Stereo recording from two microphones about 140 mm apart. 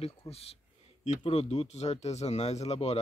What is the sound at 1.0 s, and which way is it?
Speech, 45° left (ahead or behind).